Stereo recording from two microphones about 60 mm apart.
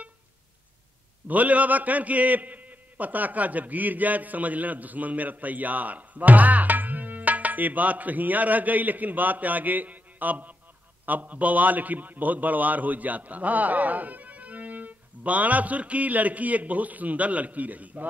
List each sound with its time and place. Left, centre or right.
1.2 s a man's voice: right